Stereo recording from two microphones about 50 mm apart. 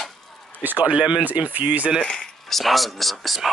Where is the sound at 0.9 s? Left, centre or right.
Centre.